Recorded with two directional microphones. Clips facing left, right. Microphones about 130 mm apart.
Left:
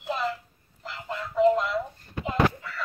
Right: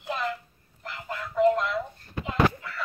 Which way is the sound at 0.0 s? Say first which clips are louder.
Left 2 dB; 5° left (ahead or behind).